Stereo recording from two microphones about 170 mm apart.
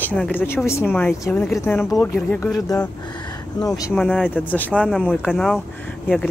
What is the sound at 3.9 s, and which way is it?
Speech, centre (ahead or behind).